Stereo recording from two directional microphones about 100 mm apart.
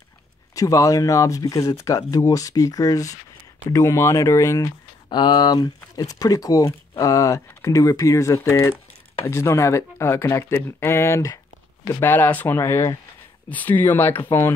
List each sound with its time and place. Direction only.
0.6 s speech: 35° left (ahead or behind)
5.1 s speech: 45° left (ahead or behind); by 14.5 s 25° left (ahead or behind)